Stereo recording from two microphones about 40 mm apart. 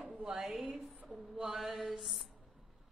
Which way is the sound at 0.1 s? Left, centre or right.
Right.